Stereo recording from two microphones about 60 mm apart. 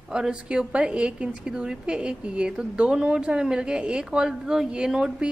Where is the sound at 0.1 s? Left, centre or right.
Centre.